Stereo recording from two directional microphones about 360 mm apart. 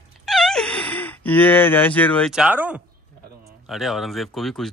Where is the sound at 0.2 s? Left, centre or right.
Centre.